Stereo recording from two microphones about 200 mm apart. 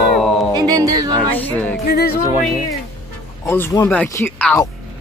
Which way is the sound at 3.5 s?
15° left (ahead or behind).